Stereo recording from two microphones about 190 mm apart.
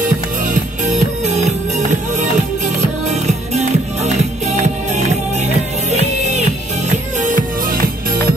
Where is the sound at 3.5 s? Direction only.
35° right (ahead or behind).